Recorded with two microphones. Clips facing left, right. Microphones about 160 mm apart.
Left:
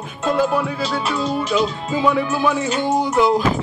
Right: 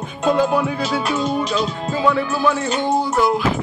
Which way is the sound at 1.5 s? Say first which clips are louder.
Left 2 dB; 15° left (ahead or behind).